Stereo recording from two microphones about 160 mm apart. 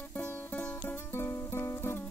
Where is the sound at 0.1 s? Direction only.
10° left (ahead or behind).